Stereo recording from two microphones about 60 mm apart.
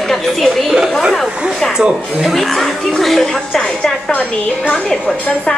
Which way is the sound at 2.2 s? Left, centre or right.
Centre.